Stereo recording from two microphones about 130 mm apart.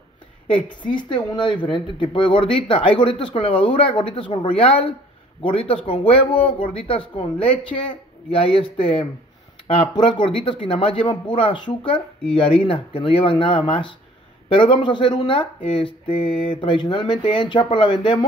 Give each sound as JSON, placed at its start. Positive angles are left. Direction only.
{"t": 0.7, "sound": "speech", "side_deg": 40}